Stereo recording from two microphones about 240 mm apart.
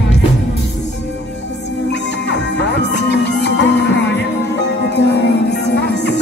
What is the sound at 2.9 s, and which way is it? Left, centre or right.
Music, left.